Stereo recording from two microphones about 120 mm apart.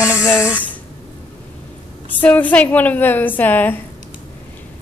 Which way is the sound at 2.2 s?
15° left (ahead or behind).